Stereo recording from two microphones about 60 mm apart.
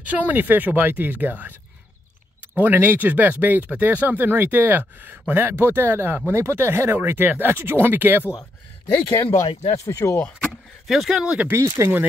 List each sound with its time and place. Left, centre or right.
0.0 s speech: right
2.5 s speech: right
8.8 s speech: left
10.5 s speech: centre
11.8 s speech: right